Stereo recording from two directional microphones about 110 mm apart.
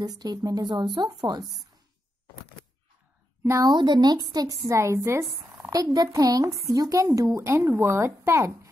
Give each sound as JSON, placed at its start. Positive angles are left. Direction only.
{"t": 0.0, "sound": "a woman's voice", "side_deg": -35}
{"t": 3.4, "sound": "a woman's voice", "side_deg": -30}
{"t": 3.7, "sound": "a woman's voice", "side_deg": -40}